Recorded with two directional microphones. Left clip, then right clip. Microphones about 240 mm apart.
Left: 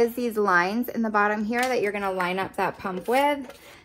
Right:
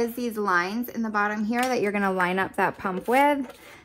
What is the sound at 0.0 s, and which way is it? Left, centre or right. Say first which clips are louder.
Speech: left 4 dB; centre.